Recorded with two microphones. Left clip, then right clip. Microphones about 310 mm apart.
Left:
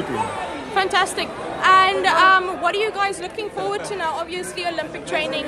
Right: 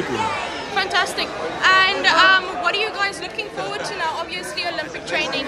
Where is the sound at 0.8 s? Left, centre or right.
Left.